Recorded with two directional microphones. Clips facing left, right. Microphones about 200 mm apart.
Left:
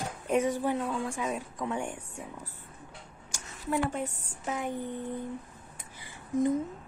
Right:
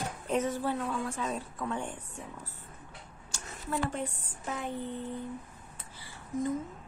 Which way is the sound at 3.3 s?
15° left (ahead or behind).